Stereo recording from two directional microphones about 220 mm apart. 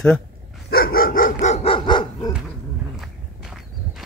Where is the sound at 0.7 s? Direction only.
40° left (ahead or behind); by 2.3 s 20° left (ahead or behind).